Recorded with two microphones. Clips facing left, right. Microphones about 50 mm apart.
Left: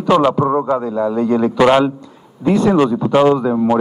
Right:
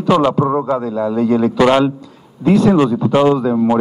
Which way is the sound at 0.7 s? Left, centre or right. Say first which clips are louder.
Even; centre.